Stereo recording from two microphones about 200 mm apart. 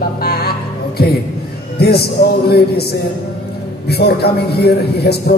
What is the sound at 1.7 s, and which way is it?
A man's voice, 50° left (ahead or behind).